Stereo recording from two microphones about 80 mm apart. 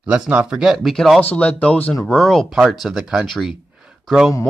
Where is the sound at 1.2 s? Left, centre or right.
Centre.